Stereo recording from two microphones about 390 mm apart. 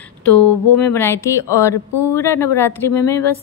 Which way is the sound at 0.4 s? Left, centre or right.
Left.